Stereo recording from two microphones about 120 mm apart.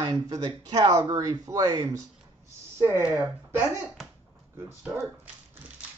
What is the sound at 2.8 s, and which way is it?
Speech, 20° right (ahead or behind).